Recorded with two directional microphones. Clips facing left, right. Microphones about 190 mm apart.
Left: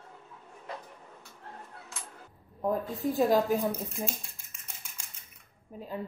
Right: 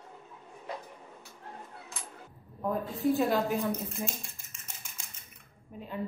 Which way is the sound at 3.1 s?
40° left (ahead or behind).